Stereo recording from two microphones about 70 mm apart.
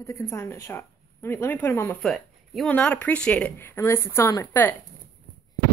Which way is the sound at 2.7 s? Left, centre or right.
Left.